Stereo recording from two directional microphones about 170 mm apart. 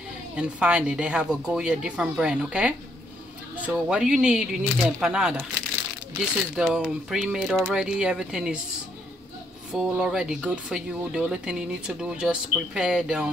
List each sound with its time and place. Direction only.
0.4 s speech: 5° right (ahead or behind)
9.7 s speech: 5° right (ahead or behind)